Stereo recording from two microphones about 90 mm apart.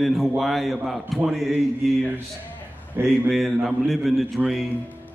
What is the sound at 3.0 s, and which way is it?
Speech, 25° right (ahead or behind).